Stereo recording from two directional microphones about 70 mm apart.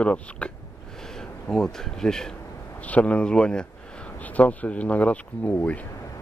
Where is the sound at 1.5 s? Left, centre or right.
Centre.